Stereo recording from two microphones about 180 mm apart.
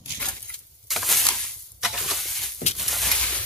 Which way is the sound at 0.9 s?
Centre (ahead or behind).